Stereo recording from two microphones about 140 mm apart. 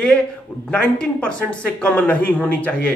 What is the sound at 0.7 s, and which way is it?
Speech, 5° left (ahead or behind).